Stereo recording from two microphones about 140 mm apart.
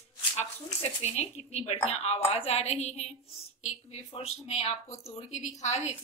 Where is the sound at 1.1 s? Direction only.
50° left (ahead or behind).